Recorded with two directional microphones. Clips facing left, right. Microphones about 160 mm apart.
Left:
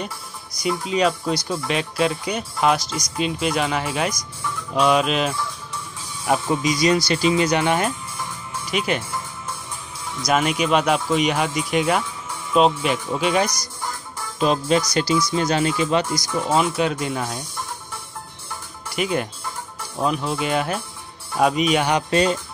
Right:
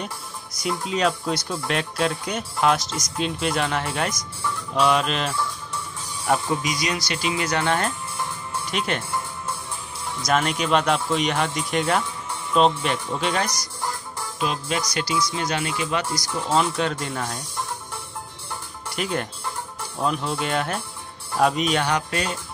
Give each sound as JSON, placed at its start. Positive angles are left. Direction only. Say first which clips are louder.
{"t": 0.6, "sound": "speech", "louder": "left 3 dB", "side_deg": 0}
{"t": 6.6, "sound": "speech", "louder": "left 8 dB", "side_deg": 30}
{"t": 7.4, "sound": "speech", "louder": "left 3 dB", "side_deg": 15}
{"t": 10.2, "sound": "speech", "louder": "left 3 dB", "side_deg": 5}
{"t": 14.4, "sound": "speech", "louder": "left 7 dB", "side_deg": 35}
{"t": 16.3, "sound": "speech", "louder": "left 2 dB", "side_deg": 10}
{"t": 18.9, "sound": "speech", "louder": "left 4 dB", "side_deg": 5}